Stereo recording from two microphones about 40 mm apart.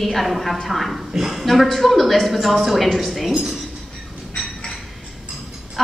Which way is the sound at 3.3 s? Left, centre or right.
Centre.